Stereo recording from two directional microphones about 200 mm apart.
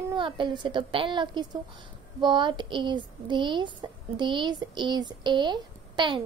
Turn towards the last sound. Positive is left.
turn(degrees=-25)  # may be behind; listen again after turning